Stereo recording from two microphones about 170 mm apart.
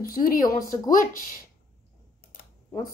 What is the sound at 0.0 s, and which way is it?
Speech, 60° left (ahead or behind).